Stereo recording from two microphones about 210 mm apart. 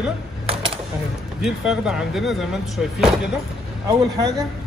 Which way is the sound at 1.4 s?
5° right (ahead or behind).